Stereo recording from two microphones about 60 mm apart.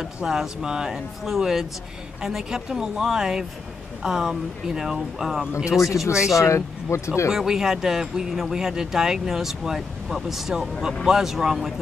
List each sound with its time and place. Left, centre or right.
0.0 s speech: centre
5.7 s speech: left
7.3 s speech: centre